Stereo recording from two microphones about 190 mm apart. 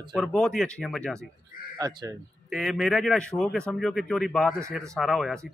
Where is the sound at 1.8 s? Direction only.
20° right (ahead or behind).